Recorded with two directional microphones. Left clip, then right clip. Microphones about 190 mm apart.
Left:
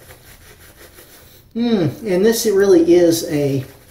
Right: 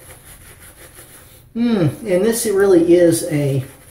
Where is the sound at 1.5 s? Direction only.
10° left (ahead or behind).